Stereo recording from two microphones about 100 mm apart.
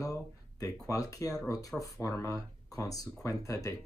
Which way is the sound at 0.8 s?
35° left (ahead or behind).